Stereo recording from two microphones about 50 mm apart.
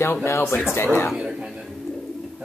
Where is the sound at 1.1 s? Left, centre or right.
Right.